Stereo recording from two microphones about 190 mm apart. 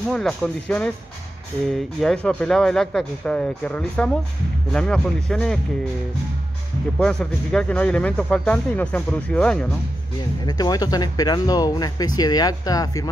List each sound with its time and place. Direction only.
0.1 s speech: 5° left (ahead or behind)
7.0 s speech: 5° left (ahead or behind)
10.4 s speech: 20° left (ahead or behind)